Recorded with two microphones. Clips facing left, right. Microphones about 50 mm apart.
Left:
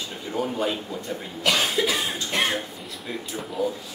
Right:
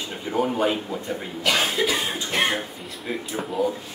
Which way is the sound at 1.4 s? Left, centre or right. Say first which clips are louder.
Even; centre.